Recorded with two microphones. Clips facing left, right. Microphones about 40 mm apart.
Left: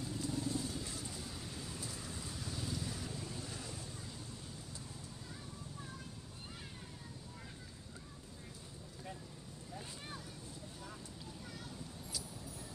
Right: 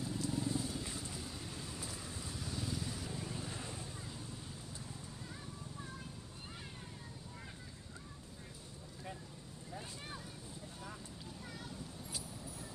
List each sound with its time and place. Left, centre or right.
0.0 s horse: centre
1.0 s waves: centre
1.8 s vehicle: centre